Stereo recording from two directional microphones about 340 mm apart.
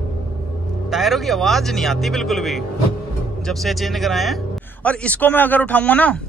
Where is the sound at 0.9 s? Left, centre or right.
Centre.